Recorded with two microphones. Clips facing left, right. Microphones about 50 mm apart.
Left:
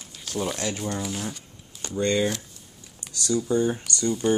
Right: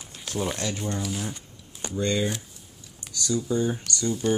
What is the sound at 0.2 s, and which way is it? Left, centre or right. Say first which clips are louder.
Speech: even; centre.